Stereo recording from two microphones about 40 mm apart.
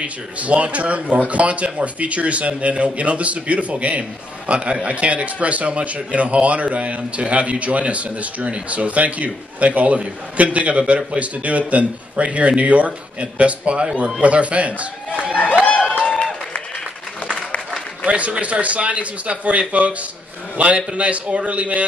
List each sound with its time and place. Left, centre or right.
0.0 s a man's voice: right
16.1 s applause: left
18.0 s speech: right